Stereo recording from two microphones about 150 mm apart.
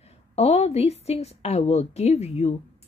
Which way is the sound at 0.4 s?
45° left (ahead or behind).